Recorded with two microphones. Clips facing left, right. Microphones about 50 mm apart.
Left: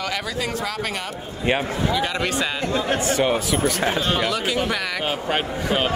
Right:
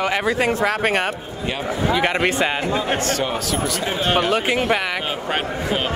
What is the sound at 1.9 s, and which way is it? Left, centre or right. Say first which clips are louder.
Speech: right 7 dB; right.